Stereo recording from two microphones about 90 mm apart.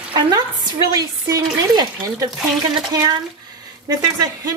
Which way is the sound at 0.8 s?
40° right (ahead or behind).